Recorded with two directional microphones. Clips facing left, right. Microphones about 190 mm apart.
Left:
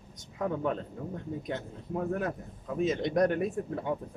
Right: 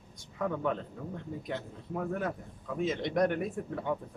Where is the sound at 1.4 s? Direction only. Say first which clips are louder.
Left 2 dB; 20° left (ahead or behind).